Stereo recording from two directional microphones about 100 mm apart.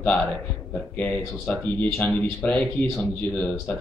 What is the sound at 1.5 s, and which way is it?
A man's voice, 15° left (ahead or behind).